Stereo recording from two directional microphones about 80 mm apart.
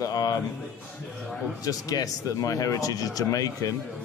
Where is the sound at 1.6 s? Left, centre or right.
Left.